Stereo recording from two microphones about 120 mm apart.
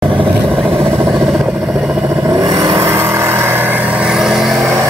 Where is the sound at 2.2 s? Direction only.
25° right (ahead or behind); by 4.7 s centre (ahead or behind).